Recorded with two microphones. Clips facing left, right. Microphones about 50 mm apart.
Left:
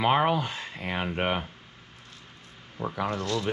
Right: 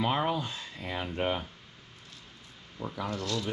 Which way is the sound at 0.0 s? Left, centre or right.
Left.